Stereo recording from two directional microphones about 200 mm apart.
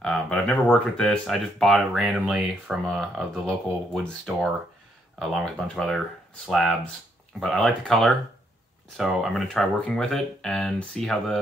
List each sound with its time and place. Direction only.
0.0 s speech: 5° left (ahead or behind)